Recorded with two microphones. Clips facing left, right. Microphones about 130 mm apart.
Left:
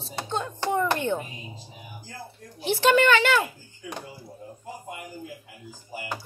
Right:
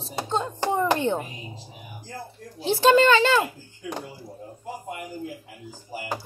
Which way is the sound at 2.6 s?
30° right (ahead or behind).